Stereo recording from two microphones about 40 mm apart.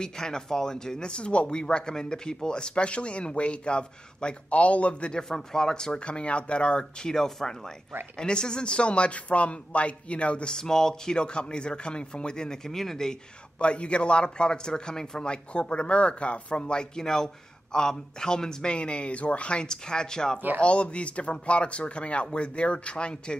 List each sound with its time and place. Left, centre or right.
0.0 s speech: centre; by 5.1 s left
5.1 s speech: centre
6.0 s speech: left
10.5 s speech: centre
11.1 s speech: left
13.6 s speech: left
17.0 s speech: centre; by 19.6 s left
19.6 s speech: centre
20.6 s speech: left